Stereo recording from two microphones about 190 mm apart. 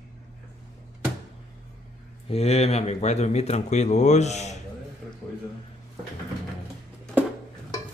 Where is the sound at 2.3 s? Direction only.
35° left (ahead or behind).